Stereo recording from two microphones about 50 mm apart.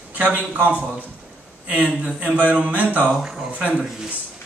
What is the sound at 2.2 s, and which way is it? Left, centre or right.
Speech, right.